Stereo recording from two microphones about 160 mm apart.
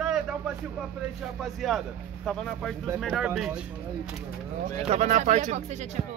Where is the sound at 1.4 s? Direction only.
Centre (ahead or behind).